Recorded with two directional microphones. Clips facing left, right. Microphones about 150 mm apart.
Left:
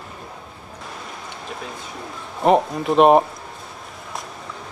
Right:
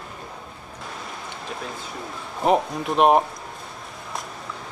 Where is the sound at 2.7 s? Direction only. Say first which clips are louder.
Left 5 dB; centre (ahead or behind).